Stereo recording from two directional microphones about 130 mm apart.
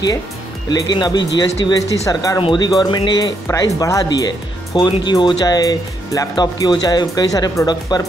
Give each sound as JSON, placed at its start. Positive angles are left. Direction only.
{"t": 0.7, "sound": "speech", "side_deg": 30}